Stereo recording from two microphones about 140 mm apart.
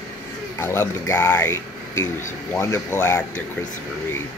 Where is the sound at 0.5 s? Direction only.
15° left (ahead or behind).